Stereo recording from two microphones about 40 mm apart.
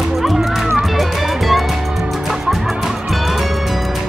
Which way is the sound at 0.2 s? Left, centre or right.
Centre.